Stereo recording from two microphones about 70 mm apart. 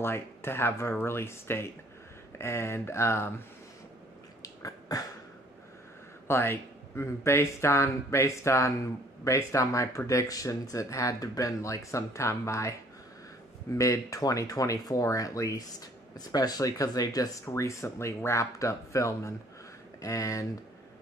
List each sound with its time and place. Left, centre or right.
0.0 s speech: left
4.4 s a sound: left
6.2 s speech: left
13.7 s speech: left